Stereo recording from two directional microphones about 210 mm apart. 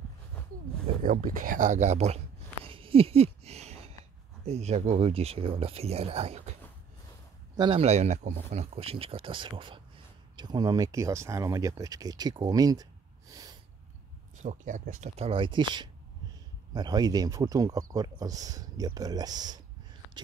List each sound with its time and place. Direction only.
1.0 s speech: 40° right (ahead or behind)
7.5 s speech: 25° right (ahead or behind)
13.3 s snort: 15° right (ahead or behind)
14.4 s speech: 35° right (ahead or behind); by 19.6 s 20° right (ahead or behind)